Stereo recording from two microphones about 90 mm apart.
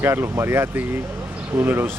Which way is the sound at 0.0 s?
25° right (ahead or behind).